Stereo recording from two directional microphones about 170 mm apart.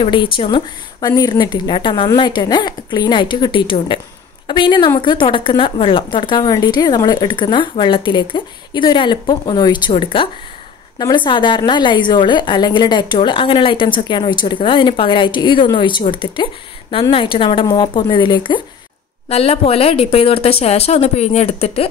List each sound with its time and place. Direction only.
0.0 s a woman's voice: 30° left (ahead or behind)